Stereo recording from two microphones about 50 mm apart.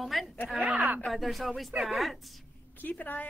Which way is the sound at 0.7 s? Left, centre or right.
Right.